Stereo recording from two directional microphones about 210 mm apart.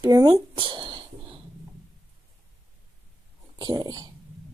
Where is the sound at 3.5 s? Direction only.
20° right (ahead or behind).